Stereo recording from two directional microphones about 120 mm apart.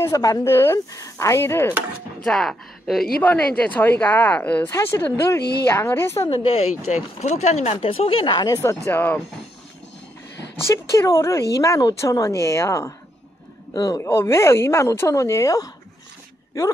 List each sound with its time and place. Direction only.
0.0 s speech: 30° left (ahead or behind)
2.2 s speech: 5° left (ahead or behind)
4.6 s speech: 25° left (ahead or behind)
6.9 s speech: 65° left (ahead or behind); by 8.5 s 35° left (ahead or behind)
8.8 s speech: 15° left (ahead or behind)
10.7 s speech: 25° left (ahead or behind)